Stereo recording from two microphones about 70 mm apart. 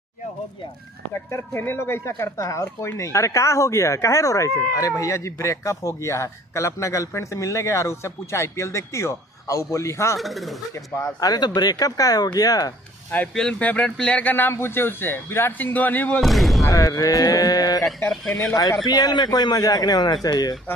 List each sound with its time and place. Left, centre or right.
1.3 s speech: left
10.1 s speech: centre
11.1 s speech: left
13.3 s speech: centre
16.2 s speech: centre
16.6 s speech: left
18.3 s speech: left
18.9 s a man's voice: left